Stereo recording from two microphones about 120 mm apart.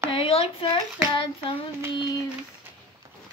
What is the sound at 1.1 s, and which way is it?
Hands, 50° left (ahead or behind).